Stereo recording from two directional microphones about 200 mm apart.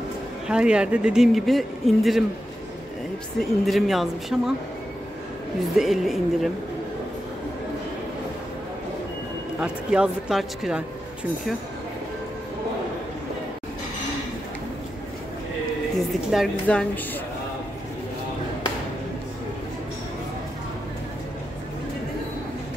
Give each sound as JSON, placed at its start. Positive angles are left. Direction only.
{"t": 0.5, "sound": "speech", "side_deg": -5}
{"t": 3.3, "sound": "speech", "side_deg": 0}
{"t": 5.8, "sound": "speech", "side_deg": 0}
{"t": 9.6, "sound": "speech", "side_deg": -5}
{"t": 16.1, "sound": "speech", "side_deg": 0}